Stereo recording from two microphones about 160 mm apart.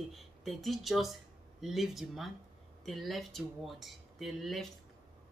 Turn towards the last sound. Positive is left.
turn(degrees=0)  # may be behind; listen again after turning